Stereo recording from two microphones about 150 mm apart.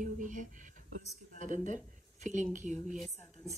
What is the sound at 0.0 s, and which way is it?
Speech, 60° right (ahead or behind).